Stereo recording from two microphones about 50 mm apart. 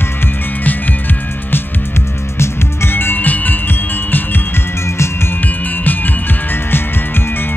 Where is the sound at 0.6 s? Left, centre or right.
Left.